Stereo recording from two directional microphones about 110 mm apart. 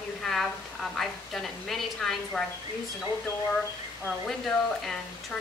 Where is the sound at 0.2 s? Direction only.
5° left (ahead or behind).